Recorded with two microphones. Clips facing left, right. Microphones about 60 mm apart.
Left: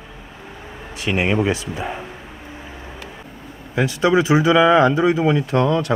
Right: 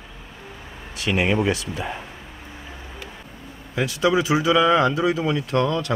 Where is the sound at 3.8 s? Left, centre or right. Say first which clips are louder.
Left 4 dB; left.